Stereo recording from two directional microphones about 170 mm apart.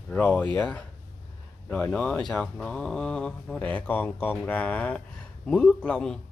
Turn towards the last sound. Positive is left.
turn(degrees=5)  # may be behind; listen again after turning